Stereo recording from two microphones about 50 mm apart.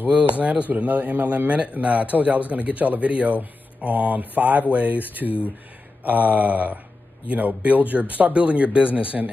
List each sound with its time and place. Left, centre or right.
0.1 s speech: right